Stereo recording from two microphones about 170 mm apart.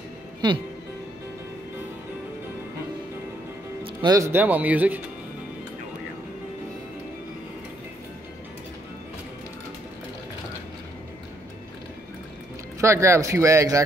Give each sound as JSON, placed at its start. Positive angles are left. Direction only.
{"t": 3.8, "sound": "speech", "side_deg": -25}
{"t": 12.8, "sound": "speech", "side_deg": -15}